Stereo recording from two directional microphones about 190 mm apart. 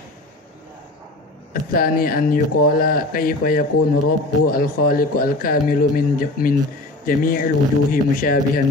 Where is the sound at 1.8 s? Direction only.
50° left (ahead or behind).